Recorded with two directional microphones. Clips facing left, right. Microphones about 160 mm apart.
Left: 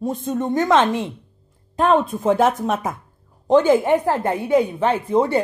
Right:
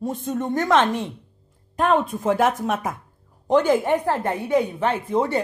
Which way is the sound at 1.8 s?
30° left (ahead or behind).